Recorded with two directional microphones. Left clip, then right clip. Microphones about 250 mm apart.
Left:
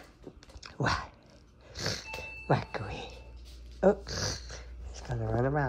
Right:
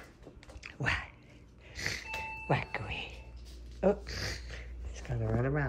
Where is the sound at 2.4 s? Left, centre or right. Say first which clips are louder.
Left 4 dB; centre.